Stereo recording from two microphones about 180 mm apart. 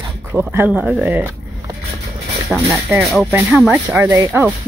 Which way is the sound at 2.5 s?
Centre (ahead or behind).